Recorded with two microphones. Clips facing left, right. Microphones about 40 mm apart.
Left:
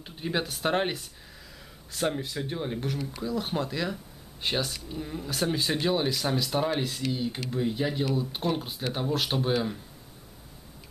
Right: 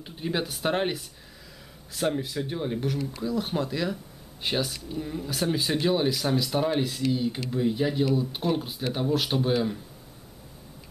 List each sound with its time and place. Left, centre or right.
0.0 s speech: centre